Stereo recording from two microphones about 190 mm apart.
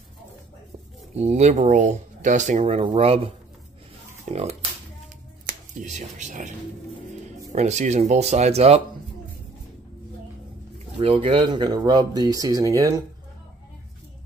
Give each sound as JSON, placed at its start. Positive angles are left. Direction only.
{"t": 1.1, "sound": "speech", "side_deg": -35}
{"t": 4.3, "sound": "speech", "side_deg": -35}
{"t": 7.5, "sound": "speech", "side_deg": -35}
{"t": 11.0, "sound": "speech", "side_deg": -30}